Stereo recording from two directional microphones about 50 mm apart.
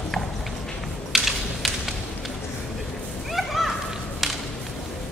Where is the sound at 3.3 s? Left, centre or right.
Centre.